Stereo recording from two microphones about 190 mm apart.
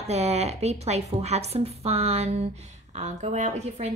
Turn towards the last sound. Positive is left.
turn(degrees=-35)  # may be behind; listen again after turning